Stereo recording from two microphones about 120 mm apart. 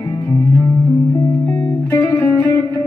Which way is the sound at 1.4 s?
20° left (ahead or behind).